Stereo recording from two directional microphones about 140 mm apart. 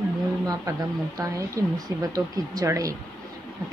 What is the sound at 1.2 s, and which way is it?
Speech, 25° right (ahead or behind).